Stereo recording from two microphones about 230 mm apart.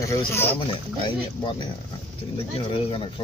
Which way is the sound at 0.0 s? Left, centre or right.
Centre.